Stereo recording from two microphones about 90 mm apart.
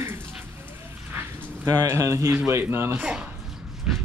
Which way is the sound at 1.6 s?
35° right (ahead or behind).